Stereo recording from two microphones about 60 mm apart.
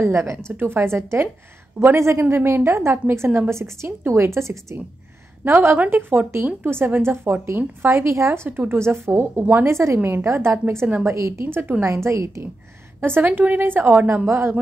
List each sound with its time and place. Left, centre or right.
0.0 s a woman's voice: right
2.2 s a woman's voice: right
5.4 s a woman's voice: right
7.9 s a woman's voice: right
8.5 s a woman's voice: right
11.4 s a woman's voice: right
11.8 s a woman's voice: right
13.0 s a woman's voice: right
14.0 s a woman's voice: right